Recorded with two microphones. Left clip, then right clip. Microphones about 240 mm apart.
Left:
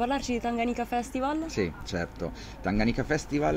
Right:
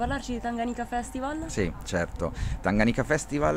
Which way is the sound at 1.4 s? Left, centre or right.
Right.